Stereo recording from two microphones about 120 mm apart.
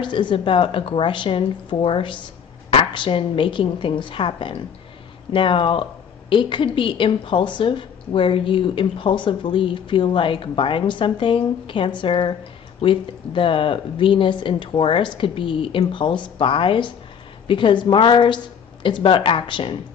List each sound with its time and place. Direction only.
0.0 s a woman's voice: 40° left (ahead or behind)